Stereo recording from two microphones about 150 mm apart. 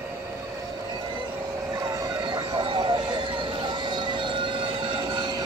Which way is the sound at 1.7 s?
25° right (ahead or behind).